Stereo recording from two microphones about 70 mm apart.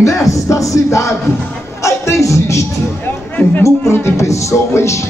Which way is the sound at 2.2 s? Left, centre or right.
Left.